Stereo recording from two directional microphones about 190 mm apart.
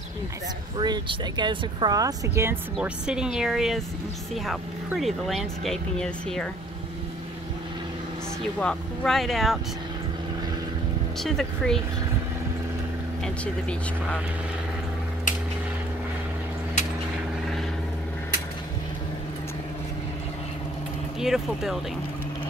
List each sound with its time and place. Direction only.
0.7 s speech: 25° right (ahead or behind); by 6.5 s 5° left (ahead or behind)
8.5 s speech: 5° left (ahead or behind)
11.2 s speech: centre (ahead or behind)
13.2 s speech: 5° left (ahead or behind)
15.3 s a sound: 40° left (ahead or behind)
21.2 s speech: centre (ahead or behind)